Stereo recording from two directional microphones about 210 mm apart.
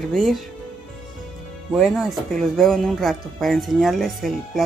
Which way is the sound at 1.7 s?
Centre (ahead or behind).